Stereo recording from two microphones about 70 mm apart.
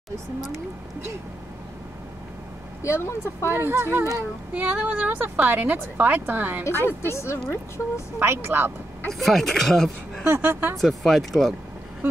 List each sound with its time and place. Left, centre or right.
2.8 s speech: left
3.5 s speech: right
4.6 s a woman's voice: right
6.6 s speech: left
8.2 s speech: right
9.2 s speech: centre
10.2 s speech: right
10.8 s speech: centre